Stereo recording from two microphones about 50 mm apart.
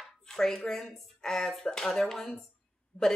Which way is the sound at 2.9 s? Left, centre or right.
Left.